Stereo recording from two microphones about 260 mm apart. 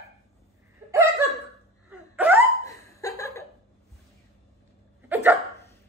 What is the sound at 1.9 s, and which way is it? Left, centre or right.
Hiccup, centre.